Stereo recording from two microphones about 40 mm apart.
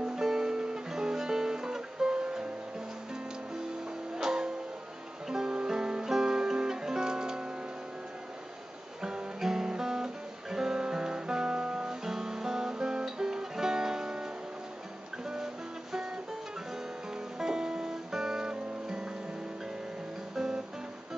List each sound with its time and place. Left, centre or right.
0.0 s guitar: centre
4.2 s music: centre
9.0 s guitar: centre
15.2 s music: centre
17.4 s music: centre
20.3 s guitar: centre